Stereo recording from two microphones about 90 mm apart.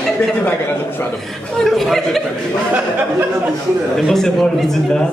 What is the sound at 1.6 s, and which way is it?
Speech, centre (ahead or behind).